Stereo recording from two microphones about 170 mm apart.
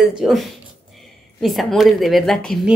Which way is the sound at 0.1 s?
Centre (ahead or behind).